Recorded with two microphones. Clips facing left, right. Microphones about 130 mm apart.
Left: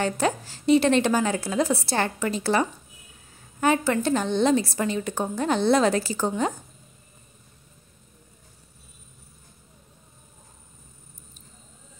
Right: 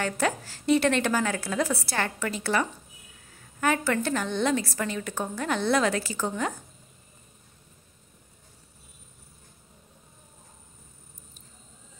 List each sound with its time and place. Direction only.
0.0 s a woman's voice: 20° left (ahead or behind)